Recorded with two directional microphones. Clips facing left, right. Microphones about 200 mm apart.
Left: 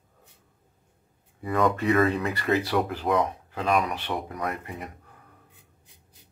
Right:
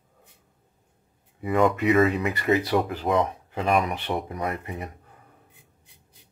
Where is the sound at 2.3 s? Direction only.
20° right (ahead or behind).